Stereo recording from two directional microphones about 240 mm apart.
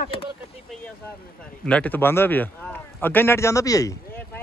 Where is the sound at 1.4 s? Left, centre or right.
Centre.